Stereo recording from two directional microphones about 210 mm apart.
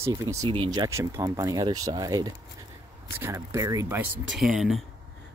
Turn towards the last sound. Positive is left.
turn(degrees=0)  # may be behind; listen again after turning